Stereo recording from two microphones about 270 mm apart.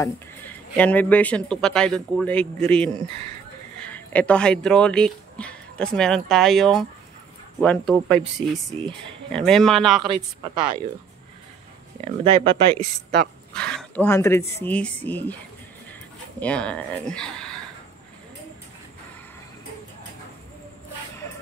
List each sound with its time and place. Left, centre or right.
0.0 s speech: centre
8.2 s speech: centre
9.3 s speech: centre
10.0 s a woman's voice: centre
12.0 s speech: right
13.5 s speech: centre
16.3 s speech: centre